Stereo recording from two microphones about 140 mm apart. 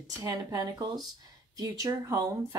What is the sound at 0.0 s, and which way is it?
Speech, 25° right (ahead or behind).